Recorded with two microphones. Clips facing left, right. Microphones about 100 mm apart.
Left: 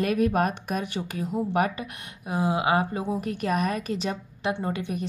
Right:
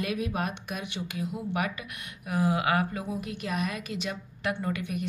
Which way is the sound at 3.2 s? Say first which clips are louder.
Left 6 dB; 45° left (ahead or behind).